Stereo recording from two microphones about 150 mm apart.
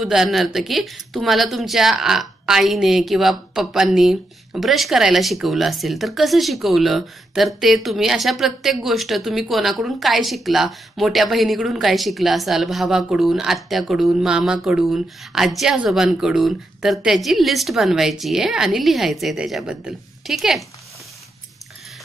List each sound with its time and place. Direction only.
0.0 s speech: 5° right (ahead or behind)